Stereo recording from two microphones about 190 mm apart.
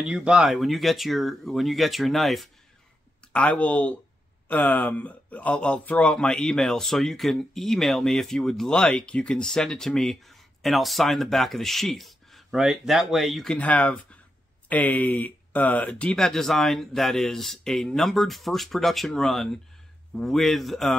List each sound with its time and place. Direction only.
0.0 s speech: 5° right (ahead or behind)